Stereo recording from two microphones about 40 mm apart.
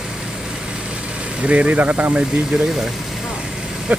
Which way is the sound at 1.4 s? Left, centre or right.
Right.